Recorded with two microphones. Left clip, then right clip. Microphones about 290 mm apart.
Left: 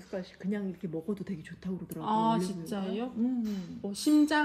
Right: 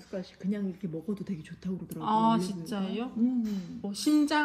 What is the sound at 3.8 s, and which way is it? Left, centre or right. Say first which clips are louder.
Speech: left 1 dB; right.